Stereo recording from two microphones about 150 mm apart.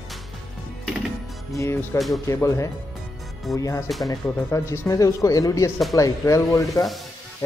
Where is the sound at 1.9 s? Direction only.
Centre (ahead or behind).